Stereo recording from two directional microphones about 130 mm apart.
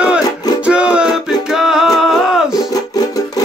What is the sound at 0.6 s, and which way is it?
Music, 10° right (ahead or behind).